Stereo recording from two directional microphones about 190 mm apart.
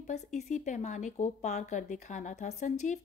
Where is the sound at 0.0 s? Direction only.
35° left (ahead or behind).